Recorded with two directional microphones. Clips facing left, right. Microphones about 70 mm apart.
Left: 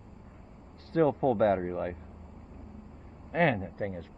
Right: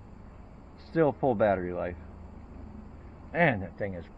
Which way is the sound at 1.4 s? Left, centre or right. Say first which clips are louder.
Even; centre.